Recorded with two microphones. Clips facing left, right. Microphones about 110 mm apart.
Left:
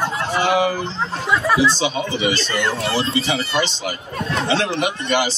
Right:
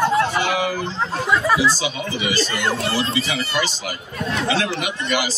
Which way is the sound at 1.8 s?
30° left (ahead or behind).